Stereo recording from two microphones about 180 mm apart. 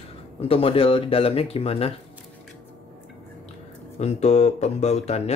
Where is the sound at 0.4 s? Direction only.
30° left (ahead or behind).